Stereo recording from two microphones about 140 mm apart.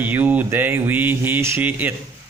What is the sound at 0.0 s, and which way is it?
Speech, 15° right (ahead or behind).